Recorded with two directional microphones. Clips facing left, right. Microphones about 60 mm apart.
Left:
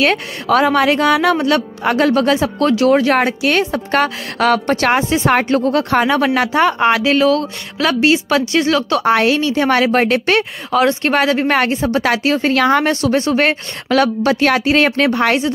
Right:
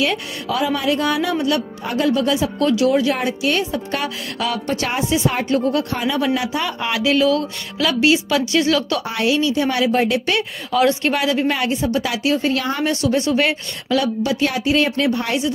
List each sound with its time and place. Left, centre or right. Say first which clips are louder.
0.0 s speech: left 5 dB; left
2.3 s speech: left 3 dB; left
9.0 s a woman's voice: left 5 dB; left
10.8 s speech: left 3 dB; left
12.9 s speech: left 3 dB; left
13.8 s a woman's voice: left 5 dB; left